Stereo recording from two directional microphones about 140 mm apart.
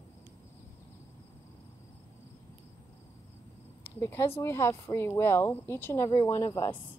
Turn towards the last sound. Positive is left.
turn(degrees=20)  # may be behind; listen again after turning